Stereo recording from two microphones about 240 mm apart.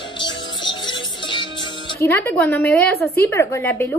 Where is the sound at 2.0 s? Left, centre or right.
Centre.